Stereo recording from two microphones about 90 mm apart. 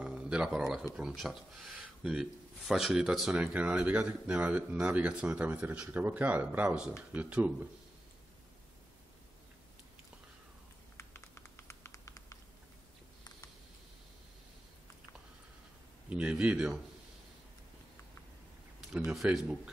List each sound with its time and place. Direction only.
0.0 s a sound: 10° right (ahead or behind)
0.6 s speech: centre (ahead or behind)
1.7 s speech: 10° right (ahead or behind)
11.0 s a sound: 30° left (ahead or behind)
16.1 s speech: 15° right (ahead or behind)
19.3 s speech: 10° right (ahead or behind)